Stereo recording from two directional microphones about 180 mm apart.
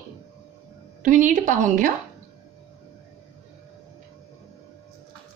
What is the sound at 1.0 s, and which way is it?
Speech, 45° right (ahead or behind).